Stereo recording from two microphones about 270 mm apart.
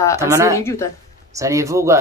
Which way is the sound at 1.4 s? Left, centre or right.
Centre.